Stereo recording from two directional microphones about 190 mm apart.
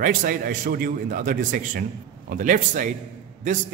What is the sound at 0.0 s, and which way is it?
A man's voice, 45° right (ahead or behind).